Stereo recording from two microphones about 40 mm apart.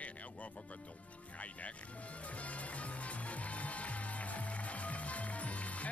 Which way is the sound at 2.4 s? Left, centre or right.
Left.